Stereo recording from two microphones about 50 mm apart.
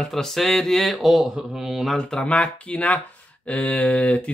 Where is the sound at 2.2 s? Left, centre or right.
Left.